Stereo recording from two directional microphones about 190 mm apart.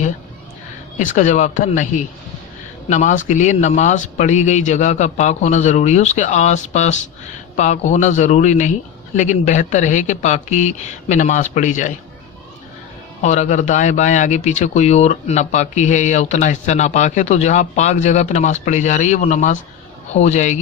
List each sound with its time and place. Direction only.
0.9 s speech: 40° left (ahead or behind)
13.2 s speech: 40° left (ahead or behind)